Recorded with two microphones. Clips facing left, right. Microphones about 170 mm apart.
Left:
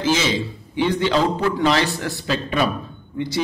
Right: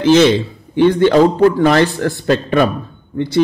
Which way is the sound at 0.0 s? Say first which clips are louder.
Right 10 dB; 65° right (ahead or behind).